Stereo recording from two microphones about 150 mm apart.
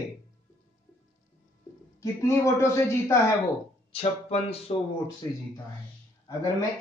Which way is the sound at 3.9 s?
45° left (ahead or behind).